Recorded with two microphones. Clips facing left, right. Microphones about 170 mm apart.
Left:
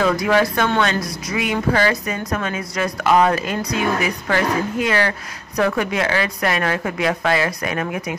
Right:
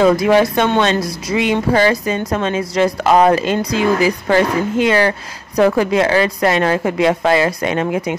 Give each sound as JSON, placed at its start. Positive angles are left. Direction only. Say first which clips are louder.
{"t": 0.0, "sound": "speech", "louder": "right 5 dB", "side_deg": -25}